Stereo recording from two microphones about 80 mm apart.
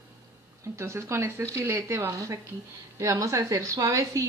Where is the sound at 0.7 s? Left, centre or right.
Right.